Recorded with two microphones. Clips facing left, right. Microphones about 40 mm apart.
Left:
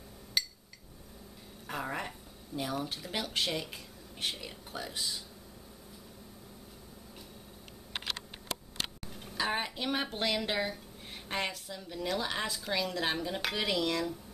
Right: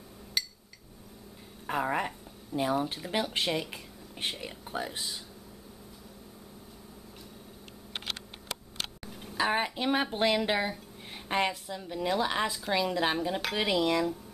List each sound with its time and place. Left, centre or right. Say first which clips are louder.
0.4 s a sound: even; centre
1.7 s speech: right 7 dB; centre
9.0 s a woman's voice: right 6 dB; centre